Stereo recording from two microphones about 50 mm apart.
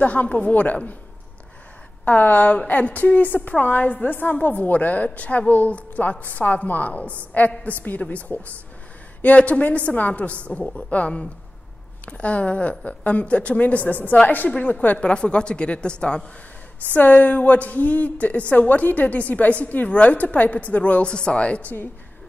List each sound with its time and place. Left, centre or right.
0.0 s a woman's voice: left
2.0 s a woman's voice: left
15.0 s a woman's voice: centre
16.9 s a woman's voice: left